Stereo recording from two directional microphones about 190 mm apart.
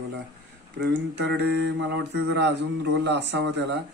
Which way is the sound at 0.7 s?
65° right (ahead or behind).